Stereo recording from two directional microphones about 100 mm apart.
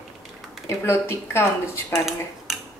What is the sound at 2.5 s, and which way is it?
Finger snapping, centre (ahead or behind).